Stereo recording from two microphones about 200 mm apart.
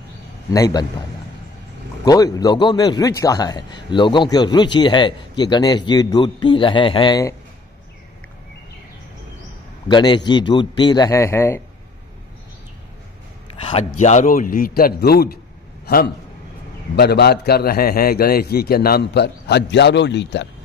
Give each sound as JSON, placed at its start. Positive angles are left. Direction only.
{"t": 0.5, "sound": "a man's voice", "side_deg": 15}
{"t": 2.0, "sound": "a man's voice", "side_deg": 20}
{"t": 9.8, "sound": "a man's voice", "side_deg": 20}
{"t": 13.6, "sound": "a man's voice", "side_deg": 30}
{"t": 15.8, "sound": "a sound", "side_deg": 50}
{"t": 16.9, "sound": "a man's voice", "side_deg": 55}